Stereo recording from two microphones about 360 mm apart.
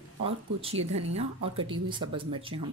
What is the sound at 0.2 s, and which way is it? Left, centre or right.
Speech, centre.